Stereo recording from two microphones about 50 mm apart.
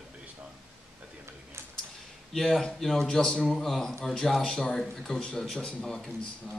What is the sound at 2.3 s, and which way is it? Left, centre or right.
A man's voice, centre.